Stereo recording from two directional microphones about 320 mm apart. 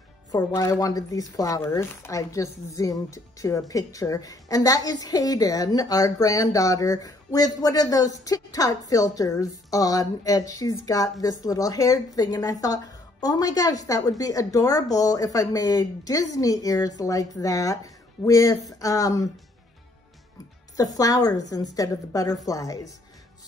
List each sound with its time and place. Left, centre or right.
0.3 s a woman's voice: centre
20.7 s a woman's voice: centre